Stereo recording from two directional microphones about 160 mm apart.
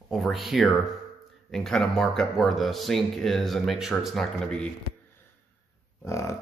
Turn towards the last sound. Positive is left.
turn(degrees=20)  # may be behind; listen again after turning